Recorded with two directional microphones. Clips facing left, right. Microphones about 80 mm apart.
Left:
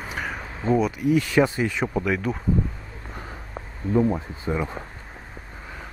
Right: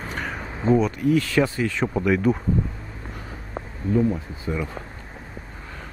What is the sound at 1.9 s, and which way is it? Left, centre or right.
Speech, centre.